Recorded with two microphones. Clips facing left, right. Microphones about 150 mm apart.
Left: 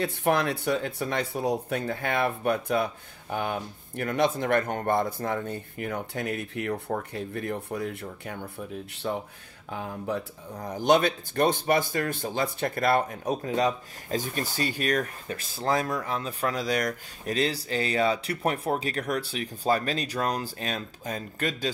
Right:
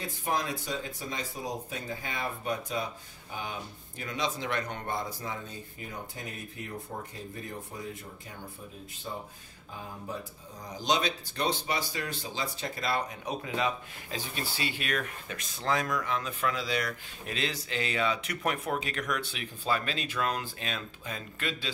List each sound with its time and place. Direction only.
0.0 s speech: 65° left (ahead or behind); by 21.7 s 45° left (ahead or behind)